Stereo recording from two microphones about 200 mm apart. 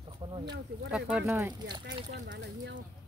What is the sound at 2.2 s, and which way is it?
Speech, 65° right (ahead or behind).